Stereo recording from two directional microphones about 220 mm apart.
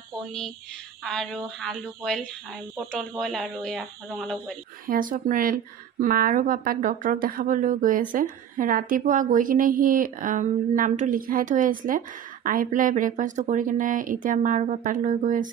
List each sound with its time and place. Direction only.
1.0 s speech: centre (ahead or behind)
4.8 s a woman's voice: 40° right (ahead or behind)